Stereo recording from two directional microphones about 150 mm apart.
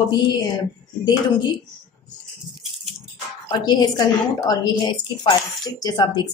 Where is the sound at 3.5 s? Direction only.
30° left (ahead or behind).